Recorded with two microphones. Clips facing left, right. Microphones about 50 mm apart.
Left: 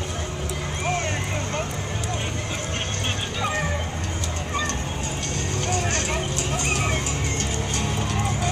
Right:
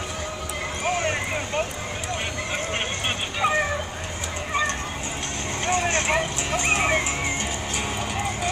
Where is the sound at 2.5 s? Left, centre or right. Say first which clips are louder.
Right 2 dB; right.